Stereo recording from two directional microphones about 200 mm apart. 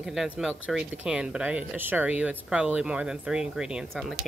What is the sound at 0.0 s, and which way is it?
Speech, centre (ahead or behind).